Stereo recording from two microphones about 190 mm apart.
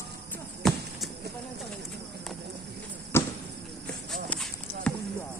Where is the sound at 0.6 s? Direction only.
Centre (ahead or behind).